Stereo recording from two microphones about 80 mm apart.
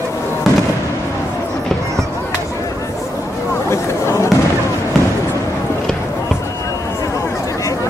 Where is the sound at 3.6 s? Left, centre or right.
Left.